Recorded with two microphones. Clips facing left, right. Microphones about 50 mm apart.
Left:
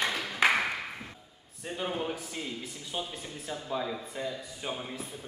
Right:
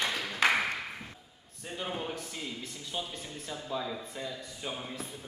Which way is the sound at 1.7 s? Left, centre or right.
Centre.